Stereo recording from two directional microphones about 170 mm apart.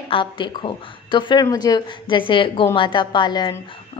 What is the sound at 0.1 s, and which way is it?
Speech, 30° left (ahead or behind).